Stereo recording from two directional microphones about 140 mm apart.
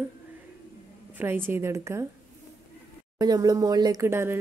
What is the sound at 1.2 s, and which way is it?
Speech, 15° right (ahead or behind).